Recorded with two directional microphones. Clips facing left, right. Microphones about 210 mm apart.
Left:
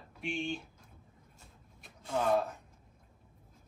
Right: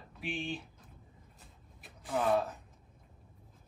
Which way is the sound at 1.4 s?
Centre (ahead or behind).